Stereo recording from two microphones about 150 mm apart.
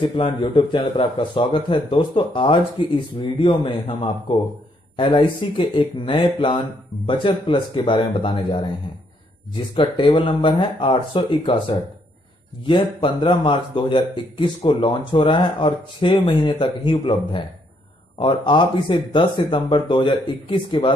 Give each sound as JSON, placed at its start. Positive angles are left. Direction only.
{"t": 0.2, "sound": "speech", "side_deg": 30}
{"t": 9.8, "sound": "speech", "side_deg": 30}
{"t": 12.6, "sound": "speech", "side_deg": 35}